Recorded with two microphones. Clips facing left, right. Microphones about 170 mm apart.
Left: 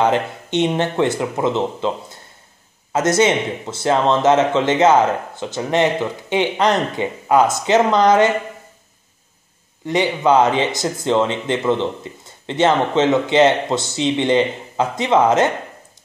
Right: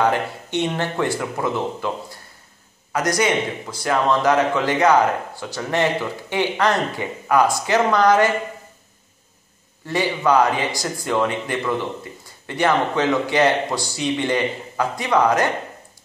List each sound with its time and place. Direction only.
0.0 s speech: 20° left (ahead or behind)
9.8 s speech: 20° left (ahead or behind)